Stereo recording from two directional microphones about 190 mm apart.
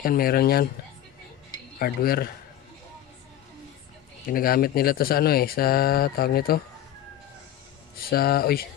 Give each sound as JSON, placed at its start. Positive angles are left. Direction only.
{"t": 0.0, "sound": "speech", "side_deg": 50}
{"t": 1.8, "sound": "speech", "side_deg": 50}
{"t": 4.3, "sound": "speech", "side_deg": 50}
{"t": 8.1, "sound": "speech", "side_deg": 55}